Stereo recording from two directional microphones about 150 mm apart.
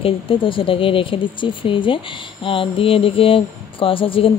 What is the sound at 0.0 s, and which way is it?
Speech, 35° left (ahead or behind).